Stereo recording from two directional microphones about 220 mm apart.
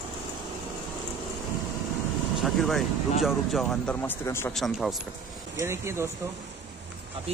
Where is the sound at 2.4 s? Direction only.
Centre (ahead or behind).